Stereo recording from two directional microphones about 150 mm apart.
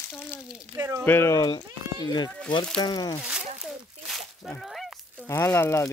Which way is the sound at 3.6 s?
Centre (ahead or behind).